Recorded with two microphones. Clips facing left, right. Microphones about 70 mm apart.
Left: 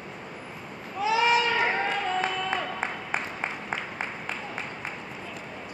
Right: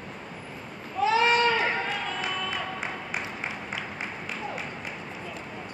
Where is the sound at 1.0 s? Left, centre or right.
Centre.